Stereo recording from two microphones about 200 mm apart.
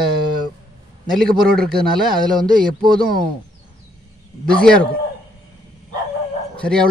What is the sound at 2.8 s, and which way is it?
Speech, 45° right (ahead or behind).